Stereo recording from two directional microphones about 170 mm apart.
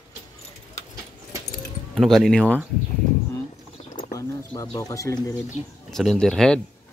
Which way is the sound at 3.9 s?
25° left (ahead or behind).